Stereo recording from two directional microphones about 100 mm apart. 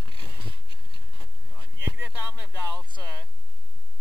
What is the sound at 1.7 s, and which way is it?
Speech, 30° right (ahead or behind).